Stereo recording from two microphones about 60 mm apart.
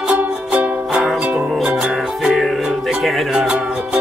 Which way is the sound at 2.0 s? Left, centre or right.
Centre.